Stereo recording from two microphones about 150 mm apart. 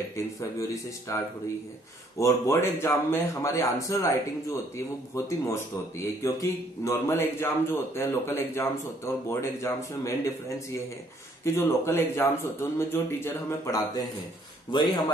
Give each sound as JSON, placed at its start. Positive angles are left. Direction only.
{"t": 0.1, "sound": "a man's voice", "side_deg": 20}